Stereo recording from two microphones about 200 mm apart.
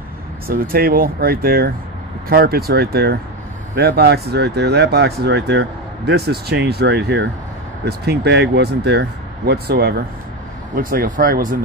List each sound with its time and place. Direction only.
0.5 s speech: 50° right (ahead or behind)